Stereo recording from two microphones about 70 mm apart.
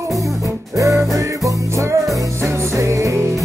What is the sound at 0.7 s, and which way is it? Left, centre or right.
Music, right.